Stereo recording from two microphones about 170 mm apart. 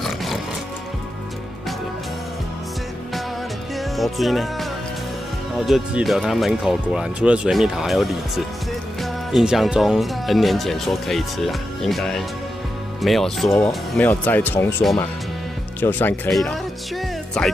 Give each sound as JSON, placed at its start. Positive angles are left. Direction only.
{"t": 0.0, "sound": "music", "side_deg": 0}
{"t": 3.7, "sound": "music", "side_deg": 0}
{"t": 5.6, "sound": "speech", "side_deg": 0}
{"t": 15.8, "sound": "speech", "side_deg": 10}